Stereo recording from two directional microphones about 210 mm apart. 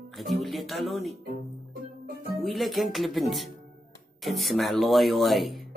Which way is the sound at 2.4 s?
Centre (ahead or behind).